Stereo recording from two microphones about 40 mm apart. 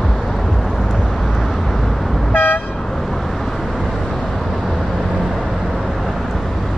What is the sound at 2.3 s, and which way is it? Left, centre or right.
Toot, left.